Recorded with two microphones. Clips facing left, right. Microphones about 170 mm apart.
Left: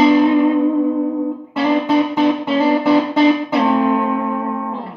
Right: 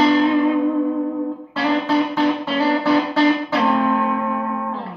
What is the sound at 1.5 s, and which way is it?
Music, 20° left (ahead or behind).